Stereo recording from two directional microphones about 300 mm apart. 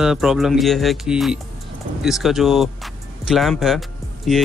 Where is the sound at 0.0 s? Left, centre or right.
Centre.